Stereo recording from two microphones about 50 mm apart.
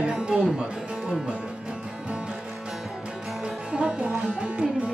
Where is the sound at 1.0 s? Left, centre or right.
Centre.